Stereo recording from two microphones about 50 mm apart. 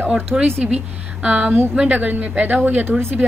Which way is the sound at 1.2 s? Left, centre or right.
Right.